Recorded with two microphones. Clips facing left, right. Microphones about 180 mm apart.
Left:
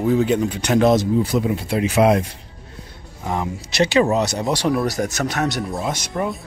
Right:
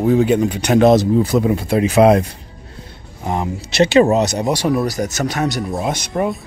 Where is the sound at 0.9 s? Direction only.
40° right (ahead or behind).